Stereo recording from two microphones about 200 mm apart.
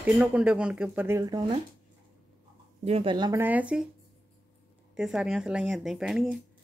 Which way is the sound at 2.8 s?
30° right (ahead or behind).